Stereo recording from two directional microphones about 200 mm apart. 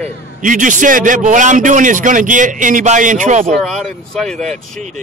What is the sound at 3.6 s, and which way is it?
Speech, centre (ahead or behind).